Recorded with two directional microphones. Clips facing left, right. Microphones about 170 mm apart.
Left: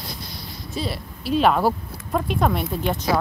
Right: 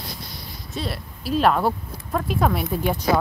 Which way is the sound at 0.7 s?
Centre (ahead or behind).